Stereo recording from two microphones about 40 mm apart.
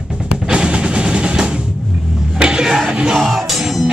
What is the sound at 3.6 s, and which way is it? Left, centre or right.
Music, centre.